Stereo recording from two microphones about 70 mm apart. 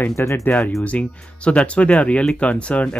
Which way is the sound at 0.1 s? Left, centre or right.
Left.